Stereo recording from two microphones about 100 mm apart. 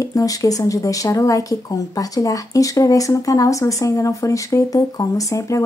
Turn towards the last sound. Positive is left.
turn(degrees=35)  # may be behind; listen again after turning